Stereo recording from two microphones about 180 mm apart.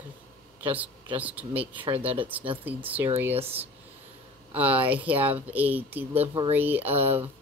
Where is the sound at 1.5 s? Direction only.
30° right (ahead or behind).